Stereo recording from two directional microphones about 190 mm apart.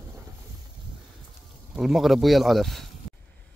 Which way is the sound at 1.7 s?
Centre (ahead or behind).